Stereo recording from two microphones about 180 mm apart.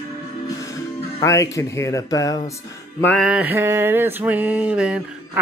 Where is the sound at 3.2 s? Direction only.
10° right (ahead or behind).